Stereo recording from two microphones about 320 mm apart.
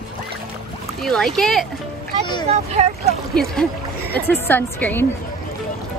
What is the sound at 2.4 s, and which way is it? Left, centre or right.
Speech, centre.